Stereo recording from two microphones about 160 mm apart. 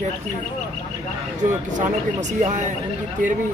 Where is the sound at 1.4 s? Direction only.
50° right (ahead or behind).